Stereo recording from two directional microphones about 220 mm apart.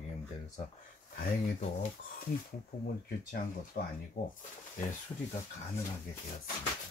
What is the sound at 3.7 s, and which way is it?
Speech, 40° left (ahead or behind).